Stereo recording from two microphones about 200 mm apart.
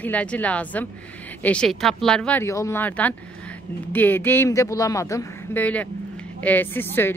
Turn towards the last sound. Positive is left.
turn(degrees=10)  # may be behind; listen again after turning